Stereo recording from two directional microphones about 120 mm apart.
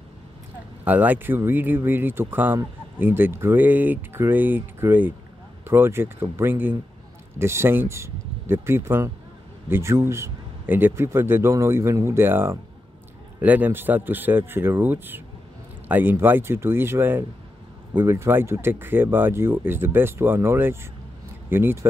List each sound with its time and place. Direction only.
0.8 s a man's voice: 15° right (ahead or behind)